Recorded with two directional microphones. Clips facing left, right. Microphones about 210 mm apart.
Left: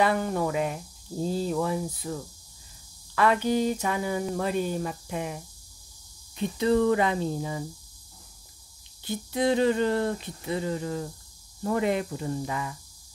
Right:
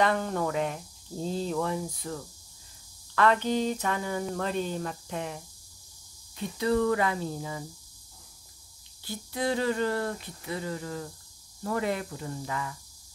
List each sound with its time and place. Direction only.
0.0 s speech: 10° left (ahead or behind)
6.3 s speech: 25° left (ahead or behind)
9.0 s speech: 20° left (ahead or behind)